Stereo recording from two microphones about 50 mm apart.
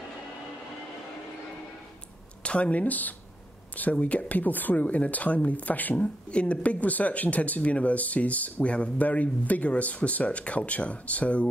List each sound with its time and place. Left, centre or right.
2.4 s speech: left
5.9 s speech: left